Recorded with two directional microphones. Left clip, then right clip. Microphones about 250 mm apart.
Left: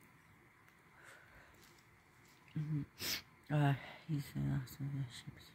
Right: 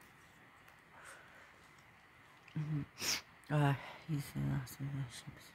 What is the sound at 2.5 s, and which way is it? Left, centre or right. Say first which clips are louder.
Speech: right 1 dB; centre.